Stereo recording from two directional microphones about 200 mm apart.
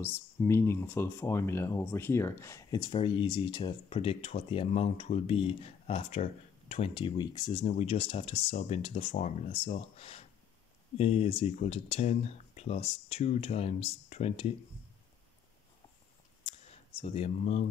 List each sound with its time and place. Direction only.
0.0 s speech: 10° left (ahead or behind)
7.6 s speech: 30° left (ahead or behind)
16.4 s a sound: 30° left (ahead or behind)